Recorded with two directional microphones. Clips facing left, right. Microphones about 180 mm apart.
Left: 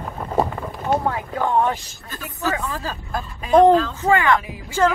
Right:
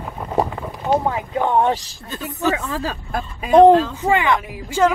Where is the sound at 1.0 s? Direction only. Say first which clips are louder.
Right 2 dB; 20° right (ahead or behind).